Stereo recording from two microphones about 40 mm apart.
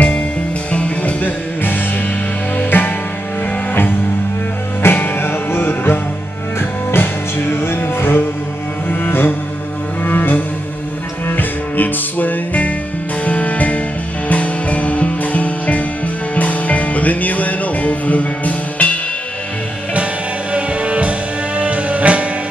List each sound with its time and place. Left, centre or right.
0.7 s music: left
1.2 s music: left
4.8 s music: left
10.0 s cello: left
11.2 s music: left
20.5 s music: right